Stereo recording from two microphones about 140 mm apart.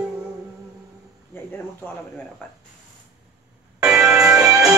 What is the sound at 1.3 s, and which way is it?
Speech, 15° left (ahead or behind).